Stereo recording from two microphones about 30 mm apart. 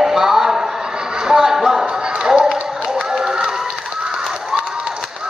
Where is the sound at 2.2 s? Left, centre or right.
Right.